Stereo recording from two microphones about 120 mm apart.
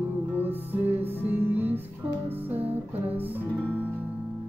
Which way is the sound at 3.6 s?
10° left (ahead or behind).